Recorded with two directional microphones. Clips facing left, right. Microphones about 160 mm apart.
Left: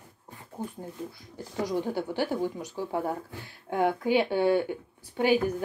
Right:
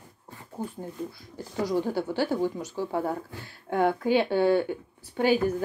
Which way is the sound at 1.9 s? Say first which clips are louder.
Right 2 dB; 15° left (ahead or behind).